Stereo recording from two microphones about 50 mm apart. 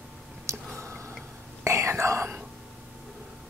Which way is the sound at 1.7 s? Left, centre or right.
Right.